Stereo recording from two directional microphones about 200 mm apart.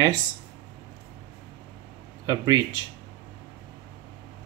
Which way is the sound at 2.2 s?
20° right (ahead or behind).